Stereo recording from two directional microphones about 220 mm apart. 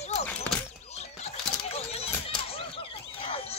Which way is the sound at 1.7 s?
25° left (ahead or behind).